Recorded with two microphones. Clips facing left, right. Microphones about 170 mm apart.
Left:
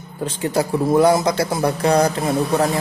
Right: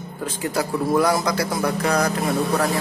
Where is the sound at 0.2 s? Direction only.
25° left (ahead or behind).